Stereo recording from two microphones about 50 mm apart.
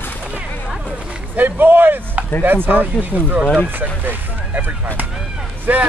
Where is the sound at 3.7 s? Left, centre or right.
Right.